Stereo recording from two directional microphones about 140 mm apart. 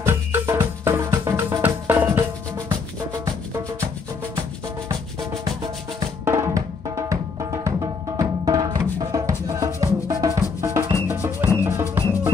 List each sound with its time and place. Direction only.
0.0 s music: 15° right (ahead or behind)
6.2 s music: 20° right (ahead or behind)